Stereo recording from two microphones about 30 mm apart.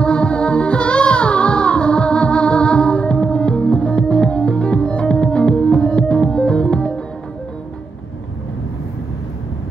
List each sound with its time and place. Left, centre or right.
0.0 s music: left